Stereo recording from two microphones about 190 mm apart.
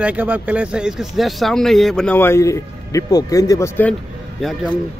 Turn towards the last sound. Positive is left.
turn(degrees=0)  # may be behind; listen again after turning